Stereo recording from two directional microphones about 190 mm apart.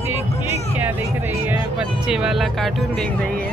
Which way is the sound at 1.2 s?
10° right (ahead or behind).